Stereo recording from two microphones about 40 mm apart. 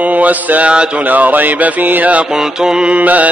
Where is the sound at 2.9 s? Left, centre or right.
Right.